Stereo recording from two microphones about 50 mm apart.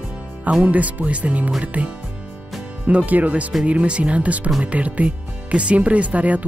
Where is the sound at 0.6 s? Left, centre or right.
Right.